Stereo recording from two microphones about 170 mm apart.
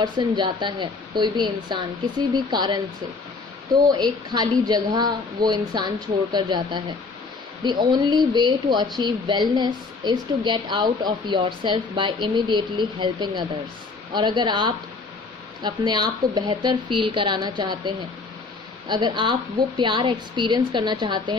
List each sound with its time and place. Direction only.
0.0 s speech: 25° right (ahead or behind)
3.8 s speech: 25° right (ahead or behind)